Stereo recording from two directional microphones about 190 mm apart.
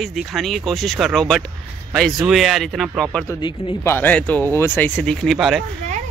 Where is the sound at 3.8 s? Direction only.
10° left (ahead or behind).